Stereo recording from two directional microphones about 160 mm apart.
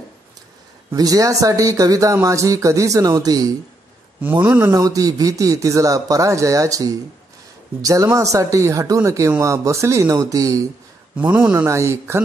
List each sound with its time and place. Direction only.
0.9 s speech: 20° right (ahead or behind)
11.1 s a man's voice: 10° right (ahead or behind)